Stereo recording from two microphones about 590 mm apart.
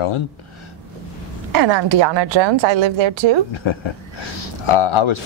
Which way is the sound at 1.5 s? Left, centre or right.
Right.